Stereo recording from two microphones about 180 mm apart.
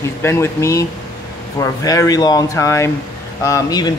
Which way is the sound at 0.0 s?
15° left (ahead or behind).